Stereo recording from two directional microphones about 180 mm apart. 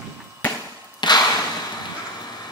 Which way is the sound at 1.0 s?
25° left (ahead or behind).